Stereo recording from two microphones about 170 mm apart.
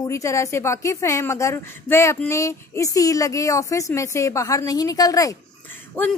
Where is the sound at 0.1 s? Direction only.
20° left (ahead or behind).